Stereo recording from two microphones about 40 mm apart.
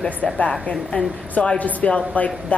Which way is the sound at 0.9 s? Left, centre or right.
Left.